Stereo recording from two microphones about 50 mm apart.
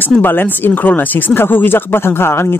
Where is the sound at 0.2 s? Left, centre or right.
Left.